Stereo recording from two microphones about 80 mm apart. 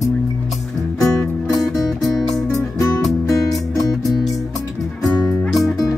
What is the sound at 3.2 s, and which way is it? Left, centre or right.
Music, left.